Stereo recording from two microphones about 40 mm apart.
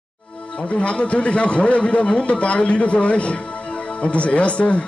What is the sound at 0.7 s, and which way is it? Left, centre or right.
A man's voice, left.